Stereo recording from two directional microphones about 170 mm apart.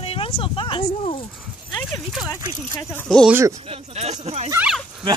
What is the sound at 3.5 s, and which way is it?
Speech, 35° right (ahead or behind).